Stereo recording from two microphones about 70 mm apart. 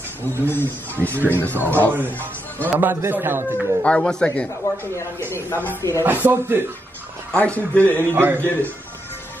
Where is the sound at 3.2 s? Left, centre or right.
Right.